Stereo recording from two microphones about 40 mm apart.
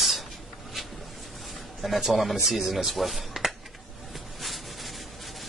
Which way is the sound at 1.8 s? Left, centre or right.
Centre.